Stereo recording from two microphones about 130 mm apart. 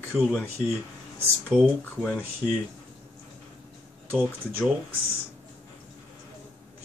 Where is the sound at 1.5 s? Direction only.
10° right (ahead or behind).